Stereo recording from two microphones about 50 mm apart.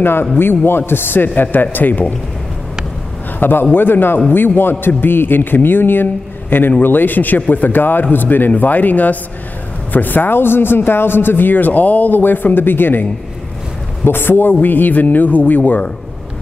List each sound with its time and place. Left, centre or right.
0.0 s a man's voice: left
3.3 s a man's voice: left
14.0 s a man's voice: left